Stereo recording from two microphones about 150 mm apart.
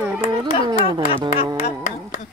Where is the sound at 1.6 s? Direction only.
60° left (ahead or behind).